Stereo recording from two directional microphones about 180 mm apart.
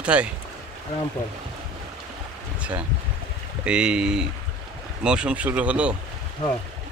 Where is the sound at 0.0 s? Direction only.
5° right (ahead or behind).